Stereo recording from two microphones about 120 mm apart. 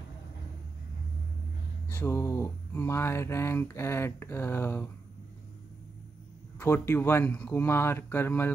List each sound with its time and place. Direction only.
1.9 s speech: 20° left (ahead or behind)
6.6 s speech: 20° left (ahead or behind)